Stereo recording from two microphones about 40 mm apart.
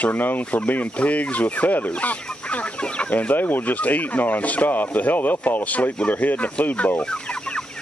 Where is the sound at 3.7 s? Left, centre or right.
Left.